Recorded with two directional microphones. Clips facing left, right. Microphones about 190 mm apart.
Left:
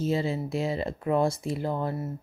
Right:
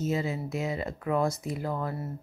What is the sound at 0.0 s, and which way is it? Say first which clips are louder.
Speech: left 3 dB; 30° left (ahead or behind).